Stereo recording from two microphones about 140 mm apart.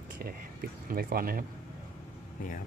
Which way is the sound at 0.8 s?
90° right.